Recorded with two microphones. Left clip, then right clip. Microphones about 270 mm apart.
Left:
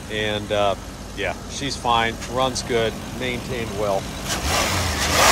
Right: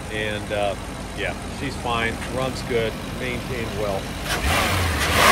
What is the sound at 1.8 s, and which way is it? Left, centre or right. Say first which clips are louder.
Speech: left 4 dB; centre.